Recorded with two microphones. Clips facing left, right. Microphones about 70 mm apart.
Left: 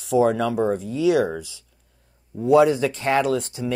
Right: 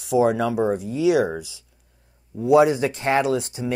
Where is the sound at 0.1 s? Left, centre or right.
Centre.